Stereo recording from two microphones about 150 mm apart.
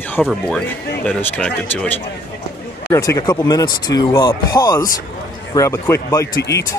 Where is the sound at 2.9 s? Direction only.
20° left (ahead or behind).